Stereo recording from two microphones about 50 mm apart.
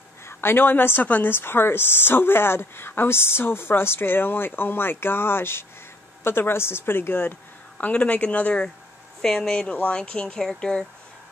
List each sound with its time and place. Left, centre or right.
0.3 s a woman's voice: left
7.8 s speech: left
9.2 s speech: centre